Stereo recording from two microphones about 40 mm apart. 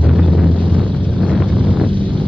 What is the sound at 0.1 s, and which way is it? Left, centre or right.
Wind noise, centre.